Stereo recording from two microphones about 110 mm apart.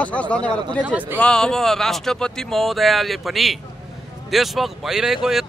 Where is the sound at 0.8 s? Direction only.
15° right (ahead or behind).